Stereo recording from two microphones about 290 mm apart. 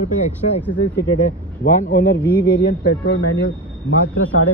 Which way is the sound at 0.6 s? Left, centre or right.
Left.